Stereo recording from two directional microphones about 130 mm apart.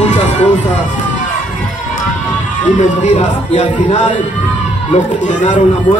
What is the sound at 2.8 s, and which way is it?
Speech, 60° left (ahead or behind).